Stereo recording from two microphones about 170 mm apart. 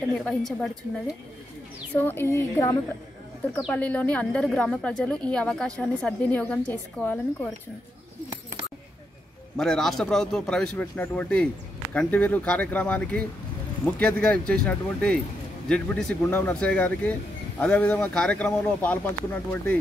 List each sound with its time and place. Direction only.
0.1 s speech: 5° left (ahead or behind)
2.0 s speech: 10° left (ahead or behind)
3.5 s speech: 5° left (ahead or behind)
9.6 s speech: centre (ahead or behind)